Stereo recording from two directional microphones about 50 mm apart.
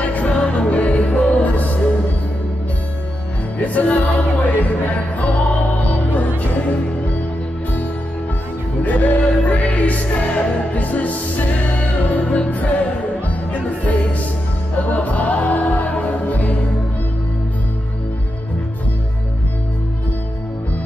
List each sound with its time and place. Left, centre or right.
0.0 s music: left
3.5 s music: left
8.8 s music: left